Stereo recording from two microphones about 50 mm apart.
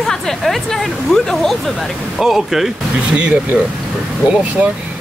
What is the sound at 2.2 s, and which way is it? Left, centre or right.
Speech, centre.